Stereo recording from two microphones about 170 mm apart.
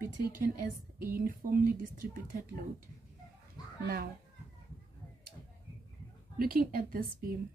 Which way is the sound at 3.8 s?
60° right (ahead or behind).